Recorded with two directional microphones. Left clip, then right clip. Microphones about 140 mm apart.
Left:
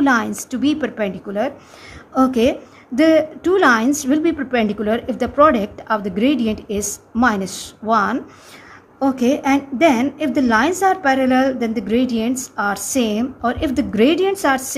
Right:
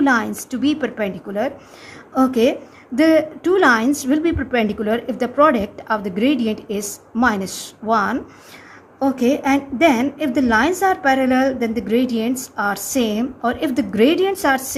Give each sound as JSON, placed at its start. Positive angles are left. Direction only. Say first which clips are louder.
{"t": 0.0, "sound": "a woman's voice", "louder": "left 1 dB", "side_deg": 10}